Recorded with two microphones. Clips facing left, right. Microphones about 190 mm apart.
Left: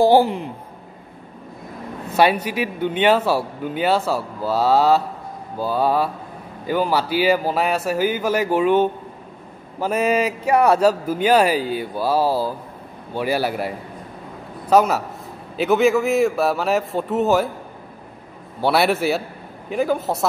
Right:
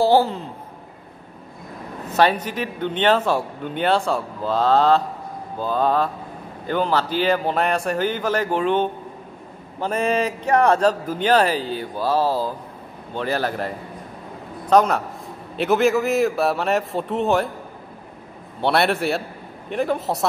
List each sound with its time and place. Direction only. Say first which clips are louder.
0.0 s a man's voice: left 2 dB; 15° left (ahead or behind)
2.0 s a man's voice: left 1 dB; 10° left (ahead or behind)
18.6 s a man's voice: left 2 dB; 5° left (ahead or behind)